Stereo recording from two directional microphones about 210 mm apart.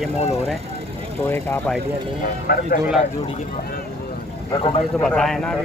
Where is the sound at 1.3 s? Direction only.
10° left (ahead or behind).